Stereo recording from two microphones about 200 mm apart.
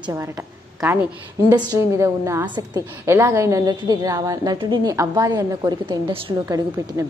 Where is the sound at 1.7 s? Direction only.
15° right (ahead or behind).